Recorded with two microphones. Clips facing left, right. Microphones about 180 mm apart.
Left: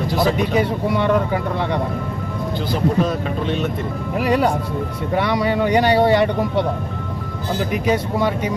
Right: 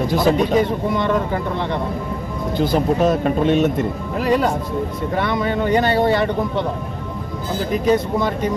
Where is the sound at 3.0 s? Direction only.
50° right (ahead or behind).